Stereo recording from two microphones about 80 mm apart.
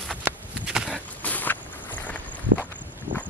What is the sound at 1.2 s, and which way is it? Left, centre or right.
Walk, left.